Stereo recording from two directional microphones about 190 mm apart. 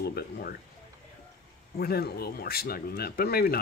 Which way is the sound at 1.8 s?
55° left (ahead or behind).